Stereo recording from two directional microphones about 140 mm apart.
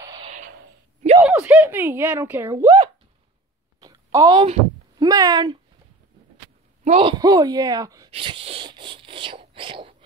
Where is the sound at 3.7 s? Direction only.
25° right (ahead or behind).